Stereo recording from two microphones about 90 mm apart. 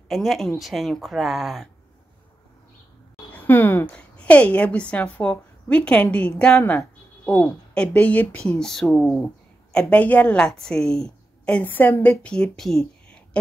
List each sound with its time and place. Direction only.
0.1 s speech: centre (ahead or behind)
3.3 s a woman's voice: 20° left (ahead or behind)
7.7 s a woman's voice: 15° left (ahead or behind)
8.5 s a woman's voice: 5° left (ahead or behind)